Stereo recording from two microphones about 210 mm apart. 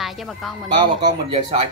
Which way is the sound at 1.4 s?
25° right (ahead or behind).